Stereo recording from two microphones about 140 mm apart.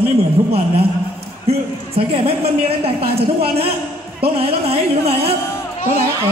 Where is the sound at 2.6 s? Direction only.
45° right (ahead or behind).